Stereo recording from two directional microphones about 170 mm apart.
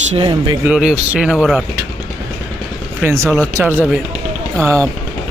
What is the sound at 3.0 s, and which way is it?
Speech, 15° right (ahead or behind).